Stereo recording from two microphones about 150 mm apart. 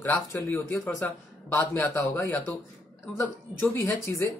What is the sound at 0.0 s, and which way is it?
A woman's voice, 15° left (ahead or behind).